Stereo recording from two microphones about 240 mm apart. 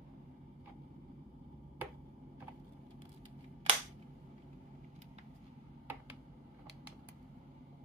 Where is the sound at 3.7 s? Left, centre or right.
Right.